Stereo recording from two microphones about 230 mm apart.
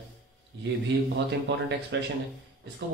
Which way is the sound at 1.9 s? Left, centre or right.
Right.